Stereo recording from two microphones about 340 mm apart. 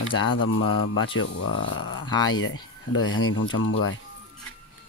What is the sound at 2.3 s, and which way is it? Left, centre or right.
Speech, left.